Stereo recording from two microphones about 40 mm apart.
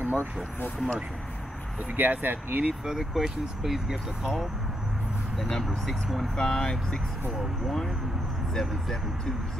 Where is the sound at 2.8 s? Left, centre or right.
Centre.